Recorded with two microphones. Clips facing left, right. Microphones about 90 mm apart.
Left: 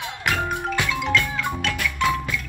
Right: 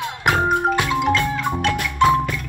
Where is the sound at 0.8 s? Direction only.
20° right (ahead or behind).